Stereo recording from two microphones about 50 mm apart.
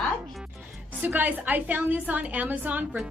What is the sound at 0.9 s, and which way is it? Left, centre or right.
A woman's voice, right.